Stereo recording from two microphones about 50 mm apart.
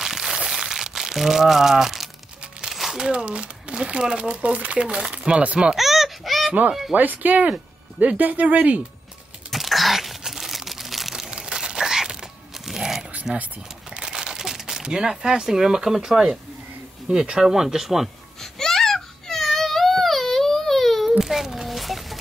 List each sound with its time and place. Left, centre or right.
0.0 s crumpling: centre
3.1 s speech: right
5.8 s baby cry: centre
6.4 s speech: right
9.5 s crumpling: centre
11.2 s crumpling: centre
13.1 s a sound: right
13.8 s crumpling: centre
17.1 s speech: centre
18.4 s baby cry: centre
21.2 s a sound: centre